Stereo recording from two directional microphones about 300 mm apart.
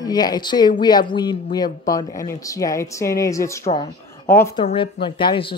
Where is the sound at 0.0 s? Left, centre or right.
Centre.